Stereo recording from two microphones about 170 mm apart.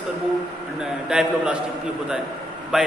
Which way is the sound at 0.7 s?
5° right (ahead or behind).